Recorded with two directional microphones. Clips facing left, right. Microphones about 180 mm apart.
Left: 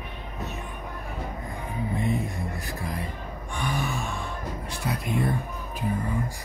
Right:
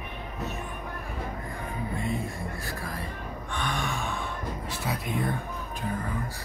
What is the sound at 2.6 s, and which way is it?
Speech, 20° left (ahead or behind).